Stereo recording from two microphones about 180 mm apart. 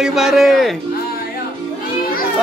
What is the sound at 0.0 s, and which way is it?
Speech, centre (ahead or behind).